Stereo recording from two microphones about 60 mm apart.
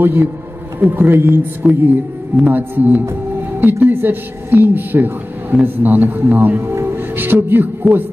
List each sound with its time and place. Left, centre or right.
0.0 s speech: right